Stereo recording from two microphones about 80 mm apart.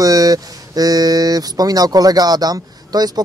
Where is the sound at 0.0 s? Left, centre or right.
Right.